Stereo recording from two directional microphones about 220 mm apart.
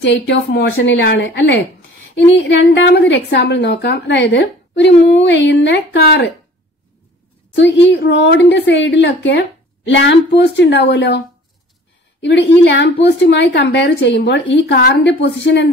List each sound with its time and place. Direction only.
0.3 s a woman's voice: 50° left (ahead or behind)
7.5 s a woman's voice: 55° left (ahead or behind)